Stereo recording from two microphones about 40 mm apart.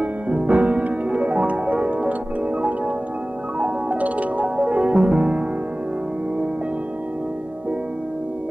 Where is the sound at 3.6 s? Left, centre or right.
Right.